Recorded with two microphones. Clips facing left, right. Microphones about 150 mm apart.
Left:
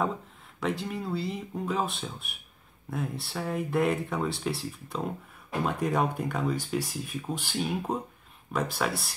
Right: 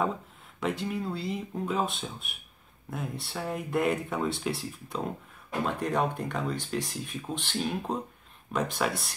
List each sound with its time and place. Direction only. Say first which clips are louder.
0.6 s speech: even; centre (ahead or behind)